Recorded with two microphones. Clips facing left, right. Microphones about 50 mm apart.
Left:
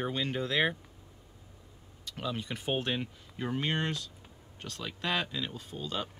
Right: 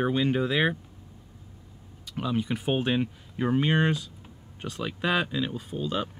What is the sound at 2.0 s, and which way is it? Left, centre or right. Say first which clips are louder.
Speech: right 7 dB; centre.